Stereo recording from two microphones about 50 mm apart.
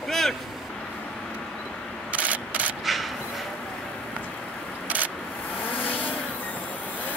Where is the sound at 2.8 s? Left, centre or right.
Centre.